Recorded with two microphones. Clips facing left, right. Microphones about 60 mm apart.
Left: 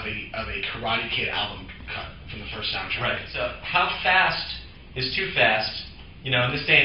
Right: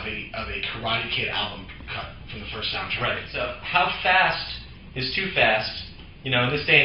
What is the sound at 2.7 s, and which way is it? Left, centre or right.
A man's voice, centre.